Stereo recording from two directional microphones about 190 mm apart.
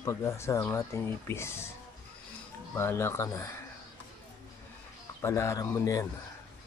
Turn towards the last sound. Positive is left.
turn(degrees=15)  # may be behind; listen again after turning